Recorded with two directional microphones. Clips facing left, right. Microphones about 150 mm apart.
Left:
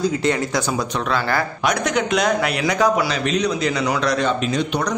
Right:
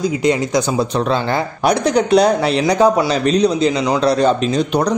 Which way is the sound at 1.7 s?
35° right (ahead or behind).